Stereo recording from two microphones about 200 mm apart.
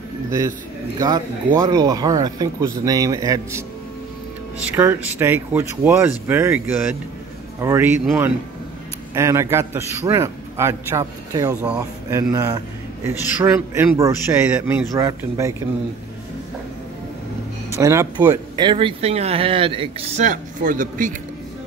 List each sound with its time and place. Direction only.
0.9 s speech: 20° right (ahead or behind)
4.6 s a man's voice: 10° right (ahead or behind)
17.7 s speech: 15° right (ahead or behind); by 21.1 s 40° right (ahead or behind)